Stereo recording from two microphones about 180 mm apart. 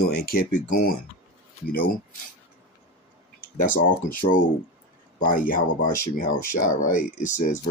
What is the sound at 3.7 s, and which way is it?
Speech, 50° left (ahead or behind).